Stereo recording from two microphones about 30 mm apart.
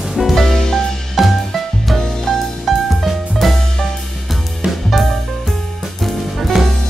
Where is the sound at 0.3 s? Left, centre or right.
Centre.